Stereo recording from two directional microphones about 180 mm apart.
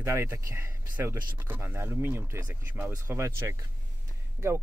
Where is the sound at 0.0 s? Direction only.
15° right (ahead or behind).